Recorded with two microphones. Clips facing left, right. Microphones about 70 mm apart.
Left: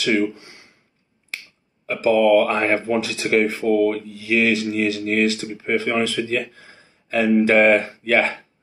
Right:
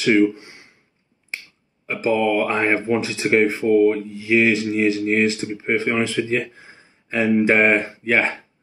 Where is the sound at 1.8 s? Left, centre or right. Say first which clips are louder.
Left 3 dB; right.